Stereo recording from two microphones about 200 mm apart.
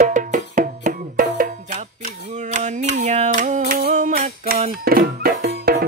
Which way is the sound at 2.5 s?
35° right (ahead or behind).